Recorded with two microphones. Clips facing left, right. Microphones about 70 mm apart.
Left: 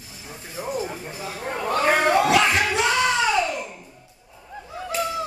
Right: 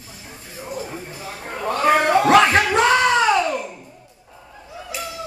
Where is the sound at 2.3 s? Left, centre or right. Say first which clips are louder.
Right 5 dB; right.